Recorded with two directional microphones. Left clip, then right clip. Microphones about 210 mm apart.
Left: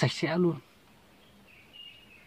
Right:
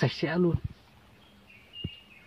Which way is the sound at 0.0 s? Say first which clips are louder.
Even; 20° left (ahead or behind).